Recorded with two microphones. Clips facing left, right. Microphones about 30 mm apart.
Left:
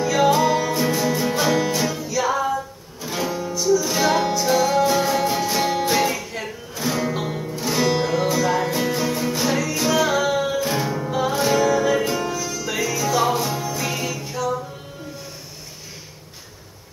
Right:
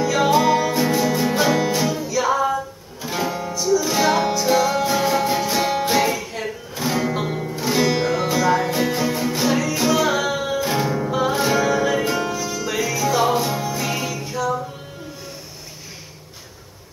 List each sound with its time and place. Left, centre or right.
0.0 s music: centre
12.6 s music: centre